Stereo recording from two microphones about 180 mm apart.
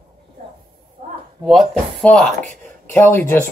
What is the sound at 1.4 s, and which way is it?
Speech, centre (ahead or behind).